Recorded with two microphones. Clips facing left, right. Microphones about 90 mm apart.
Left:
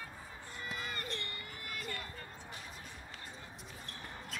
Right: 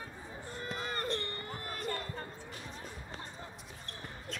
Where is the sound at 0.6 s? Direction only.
40° right (ahead or behind).